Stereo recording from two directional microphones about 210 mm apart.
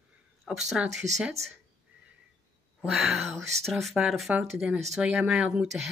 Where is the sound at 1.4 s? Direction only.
30° right (ahead or behind).